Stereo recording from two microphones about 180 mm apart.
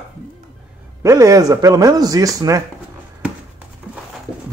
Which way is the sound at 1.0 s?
20° right (ahead or behind).